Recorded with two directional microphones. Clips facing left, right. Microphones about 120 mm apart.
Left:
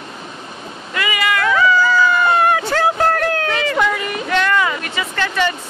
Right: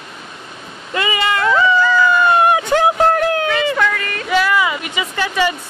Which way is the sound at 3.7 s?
15° left (ahead or behind).